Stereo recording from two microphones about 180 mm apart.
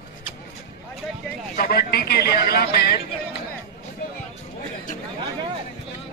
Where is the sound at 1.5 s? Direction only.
55° left (ahead or behind).